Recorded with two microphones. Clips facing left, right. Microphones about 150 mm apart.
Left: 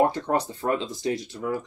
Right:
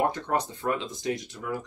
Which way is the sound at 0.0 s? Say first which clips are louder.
Left 4 dB; 30° left (ahead or behind).